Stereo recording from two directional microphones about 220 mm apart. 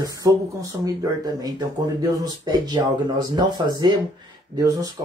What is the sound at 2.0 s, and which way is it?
Speech, 20° right (ahead or behind).